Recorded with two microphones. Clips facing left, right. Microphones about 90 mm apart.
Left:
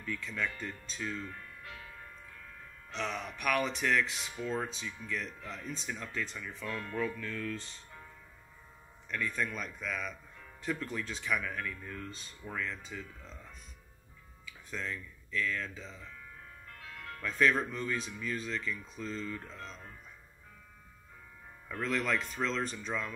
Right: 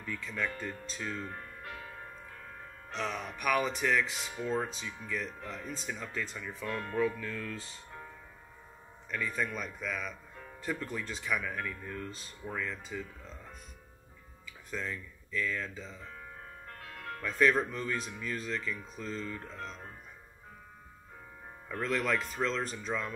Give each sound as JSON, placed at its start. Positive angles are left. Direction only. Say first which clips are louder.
{"t": 0.0, "sound": "speech", "louder": "right 1 dB", "side_deg": -5}
{"t": 1.2, "sound": "music", "louder": "right 3 dB", "side_deg": -40}
{"t": 3.0, "sound": "speech", "louder": "right 1 dB", "side_deg": 0}
{"t": 6.7, "sound": "speech", "louder": "right 3 dB", "side_deg": -30}
{"t": 7.0, "sound": "speech", "louder": "right 4 dB", "side_deg": -5}
{"t": 9.1, "sound": "speech", "louder": "right 1 dB", "side_deg": 0}
{"t": 14.7, "sound": "speech", "louder": "right 1 dB", "side_deg": 0}
{"t": 16.6, "sound": "music", "louder": "right 3 dB", "side_deg": -45}
{"t": 17.2, "sound": "speech", "louder": "right 2 dB", "side_deg": 0}
{"t": 21.8, "sound": "speech", "louder": "right 1 dB", "side_deg": 0}